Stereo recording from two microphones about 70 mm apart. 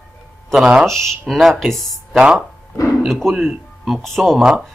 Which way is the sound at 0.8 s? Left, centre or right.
Centre.